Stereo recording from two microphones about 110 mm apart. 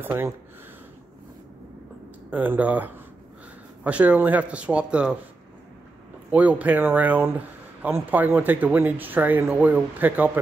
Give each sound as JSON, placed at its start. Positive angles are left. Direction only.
{"t": 0.0, "sound": "speech", "side_deg": -20}
{"t": 2.3, "sound": "speech", "side_deg": -15}
{"t": 6.3, "sound": "speech", "side_deg": -15}